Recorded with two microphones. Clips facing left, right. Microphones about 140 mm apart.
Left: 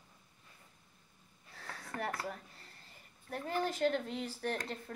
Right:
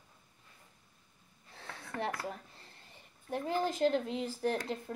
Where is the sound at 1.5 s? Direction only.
25° right (ahead or behind).